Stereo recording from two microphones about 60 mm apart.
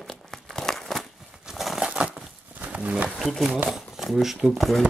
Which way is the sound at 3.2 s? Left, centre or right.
Centre.